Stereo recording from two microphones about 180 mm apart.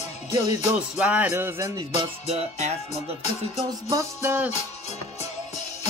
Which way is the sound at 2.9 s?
40° left (ahead or behind).